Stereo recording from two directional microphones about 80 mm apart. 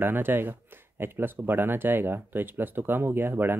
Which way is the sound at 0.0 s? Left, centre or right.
Right.